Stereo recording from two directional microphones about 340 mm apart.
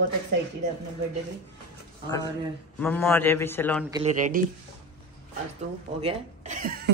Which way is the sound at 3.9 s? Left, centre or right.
Centre.